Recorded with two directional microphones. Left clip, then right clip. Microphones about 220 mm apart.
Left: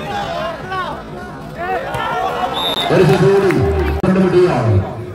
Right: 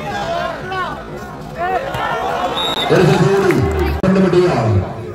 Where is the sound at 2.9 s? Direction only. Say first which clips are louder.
Left 1 dB; 50° right (ahead or behind).